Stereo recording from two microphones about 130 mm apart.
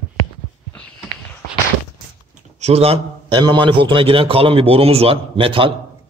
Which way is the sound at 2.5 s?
55° right (ahead or behind).